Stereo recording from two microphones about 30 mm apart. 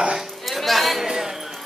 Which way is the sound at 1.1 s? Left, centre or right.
Centre.